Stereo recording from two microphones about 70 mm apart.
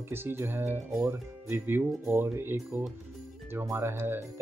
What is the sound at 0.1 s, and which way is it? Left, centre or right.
Speech, right.